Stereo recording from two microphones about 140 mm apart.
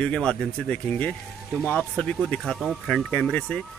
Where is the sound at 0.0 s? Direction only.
5° left (ahead or behind).